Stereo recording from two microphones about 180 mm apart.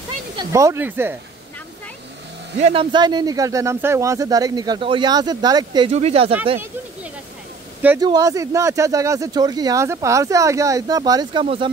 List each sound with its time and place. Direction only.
0.4 s speech: 15° right (ahead or behind)
2.6 s speech: 30° right (ahead or behind)
5.9 s speech: 35° right (ahead or behind)
8.0 s speech: 20° right (ahead or behind)
11.4 s speech: 30° right (ahead or behind)